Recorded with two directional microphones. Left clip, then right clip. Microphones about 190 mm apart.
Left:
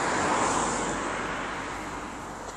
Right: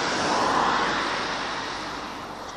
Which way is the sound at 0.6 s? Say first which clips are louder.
Right 6 dB; 30° right (ahead or behind).